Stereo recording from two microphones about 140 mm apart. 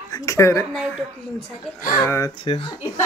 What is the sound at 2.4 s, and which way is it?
Speech, 40° left (ahead or behind).